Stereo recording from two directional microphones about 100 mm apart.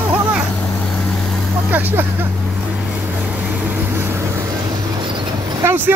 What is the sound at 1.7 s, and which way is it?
Speech, 20° right (ahead or behind).